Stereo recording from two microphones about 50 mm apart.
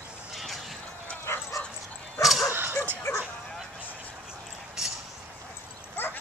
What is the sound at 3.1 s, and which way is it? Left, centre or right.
Bow-wow, left.